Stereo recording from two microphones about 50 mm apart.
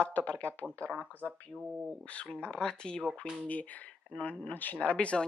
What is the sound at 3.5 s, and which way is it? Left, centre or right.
Speech, left.